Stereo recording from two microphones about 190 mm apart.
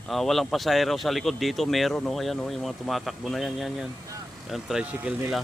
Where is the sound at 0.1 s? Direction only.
Centre (ahead or behind).